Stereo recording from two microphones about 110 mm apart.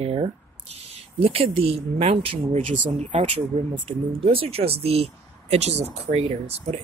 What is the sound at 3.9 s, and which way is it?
Speech, 60° right (ahead or behind).